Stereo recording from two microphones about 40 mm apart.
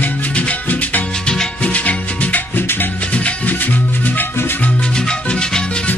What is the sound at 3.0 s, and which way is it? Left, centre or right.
Music, left.